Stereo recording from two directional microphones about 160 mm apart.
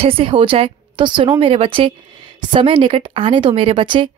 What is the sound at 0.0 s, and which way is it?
A woman's voice, 35° right (ahead or behind).